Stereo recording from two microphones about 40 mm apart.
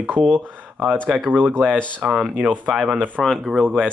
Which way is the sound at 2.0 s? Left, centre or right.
Centre.